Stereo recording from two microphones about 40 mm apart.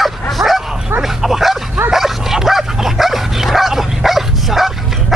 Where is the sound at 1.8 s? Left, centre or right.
Centre.